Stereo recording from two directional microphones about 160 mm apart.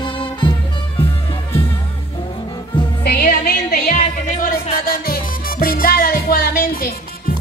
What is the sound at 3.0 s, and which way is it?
Music, 75° left (ahead or behind).